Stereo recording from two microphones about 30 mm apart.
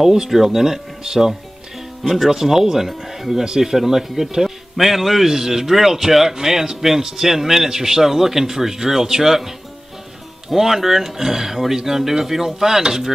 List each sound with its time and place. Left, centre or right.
0.0 s a man's voice: centre
2.0 s a man's voice: centre
10.5 s a man's voice: centre